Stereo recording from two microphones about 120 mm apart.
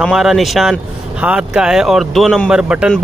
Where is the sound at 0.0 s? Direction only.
5° right (ahead or behind).